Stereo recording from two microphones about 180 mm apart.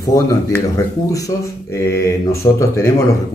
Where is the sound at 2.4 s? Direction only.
20° left (ahead or behind).